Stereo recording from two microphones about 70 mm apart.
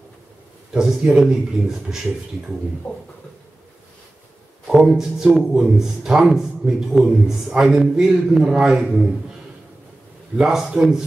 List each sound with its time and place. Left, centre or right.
0.7 s a man's voice: centre
2.9 s speech: left
4.6 s a man's voice: centre
10.4 s speech: centre